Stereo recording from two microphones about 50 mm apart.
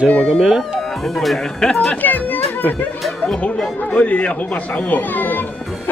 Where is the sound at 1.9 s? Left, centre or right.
Left.